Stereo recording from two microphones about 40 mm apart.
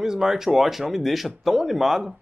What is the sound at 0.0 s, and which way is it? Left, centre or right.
Speech, centre.